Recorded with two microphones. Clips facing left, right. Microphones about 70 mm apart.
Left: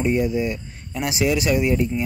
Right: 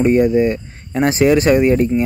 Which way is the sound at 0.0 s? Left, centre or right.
Right.